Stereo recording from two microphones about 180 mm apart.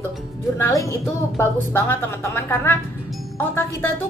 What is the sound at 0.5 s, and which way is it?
A woman's voice, 15° left (ahead or behind).